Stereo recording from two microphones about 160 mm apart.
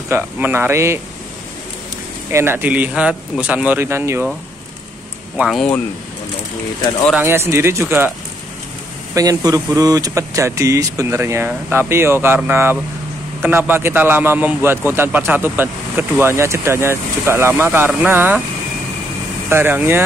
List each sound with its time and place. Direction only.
0.1 s a man's voice: 15° right (ahead or behind)
2.3 s a man's voice: 15° right (ahead or behind)
5.4 s speech: centre (ahead or behind)
7.2 s a man's voice: 15° right (ahead or behind)
9.1 s a man's voice: 20° right (ahead or behind)
19.5 s a man's voice: 10° right (ahead or behind)